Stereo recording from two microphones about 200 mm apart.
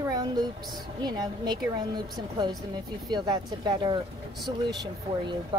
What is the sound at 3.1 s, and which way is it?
Speech, 20° right (ahead or behind).